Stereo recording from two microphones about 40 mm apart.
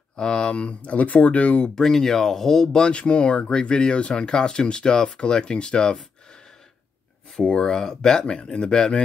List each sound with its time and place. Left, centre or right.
0.1 s speech: left
1.8 s speech: centre
2.9 s speech: left
7.5 s speech: centre